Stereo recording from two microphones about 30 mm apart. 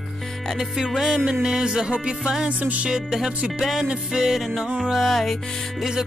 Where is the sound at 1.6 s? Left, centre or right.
Right.